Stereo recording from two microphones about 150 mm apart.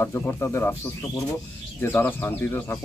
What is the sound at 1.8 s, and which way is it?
Speech, 15° left (ahead or behind).